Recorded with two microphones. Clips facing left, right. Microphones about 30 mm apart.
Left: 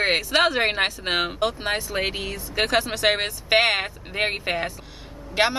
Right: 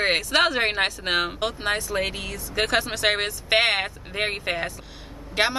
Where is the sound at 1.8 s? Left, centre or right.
Centre.